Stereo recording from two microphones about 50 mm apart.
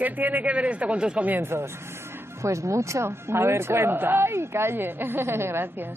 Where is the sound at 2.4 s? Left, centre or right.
Right.